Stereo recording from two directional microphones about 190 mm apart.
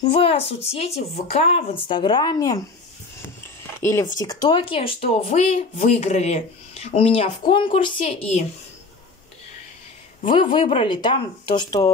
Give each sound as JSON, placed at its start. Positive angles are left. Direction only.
{"t": 0.0, "sound": "speech", "side_deg": 30}
{"t": 3.8, "sound": "speech", "side_deg": 15}
{"t": 10.2, "sound": "speech", "side_deg": 30}